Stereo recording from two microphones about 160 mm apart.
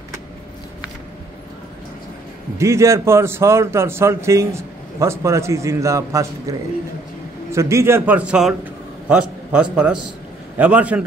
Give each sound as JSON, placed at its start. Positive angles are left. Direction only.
{"t": 2.5, "sound": "a man's voice", "side_deg": -15}
{"t": 7.5, "sound": "a man's voice", "side_deg": -20}